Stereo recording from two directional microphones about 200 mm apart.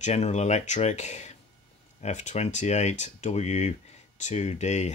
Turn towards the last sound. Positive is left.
turn(degrees=35)  # may be behind; listen again after turning